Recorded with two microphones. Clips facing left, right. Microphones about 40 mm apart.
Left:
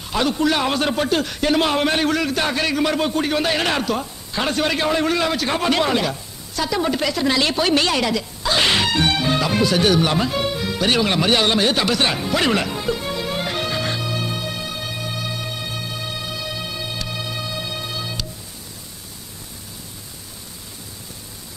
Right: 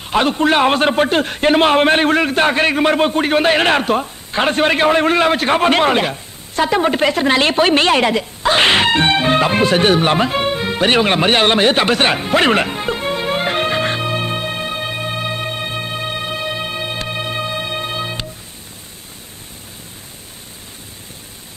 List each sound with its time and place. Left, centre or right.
0.1 s a man's voice: right